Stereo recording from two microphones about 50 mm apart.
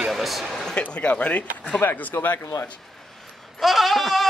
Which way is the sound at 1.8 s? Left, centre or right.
Left.